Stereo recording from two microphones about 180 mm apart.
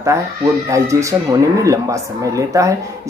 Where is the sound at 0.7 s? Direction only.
15° right (ahead or behind).